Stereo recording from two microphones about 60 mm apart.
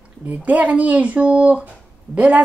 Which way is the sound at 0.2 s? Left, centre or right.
Right.